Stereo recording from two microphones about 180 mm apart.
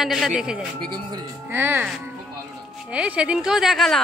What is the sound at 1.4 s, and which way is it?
Speech, 10° right (ahead or behind).